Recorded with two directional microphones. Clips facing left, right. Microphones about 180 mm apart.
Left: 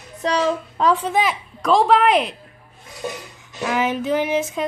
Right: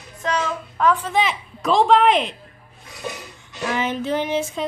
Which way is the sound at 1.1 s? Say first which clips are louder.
Left 1 dB; 5° left (ahead or behind).